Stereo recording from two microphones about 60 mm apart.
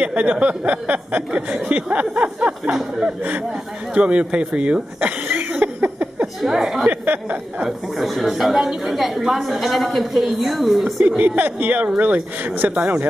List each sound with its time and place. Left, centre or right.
0.0 s speech: right
2.4 s speech: centre
5.0 s a sound: right
6.4 s a woman's voice: centre
6.9 s a sound: right
7.6 s a woman's voice: centre
11.0 s speech: right